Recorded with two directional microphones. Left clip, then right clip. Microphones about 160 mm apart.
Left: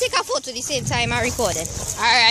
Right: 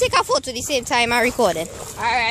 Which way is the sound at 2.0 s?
55° left (ahead or behind).